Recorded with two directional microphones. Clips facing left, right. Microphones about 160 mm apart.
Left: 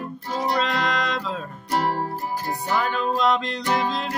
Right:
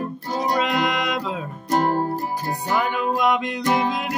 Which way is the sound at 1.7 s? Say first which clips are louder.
Right 4 dB; 45° right (ahead or behind).